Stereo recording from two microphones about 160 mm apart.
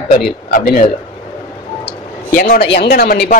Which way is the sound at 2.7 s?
90° left.